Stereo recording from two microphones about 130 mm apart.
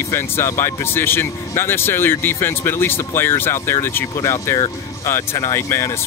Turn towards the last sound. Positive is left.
turn(degrees=20)  # may be behind; listen again after turning